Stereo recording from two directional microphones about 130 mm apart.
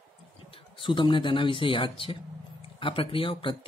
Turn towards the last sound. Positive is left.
turn(degrees=40)  # may be behind; listen again after turning